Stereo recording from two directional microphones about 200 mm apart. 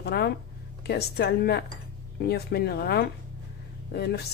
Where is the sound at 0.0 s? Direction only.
55° left (ahead or behind).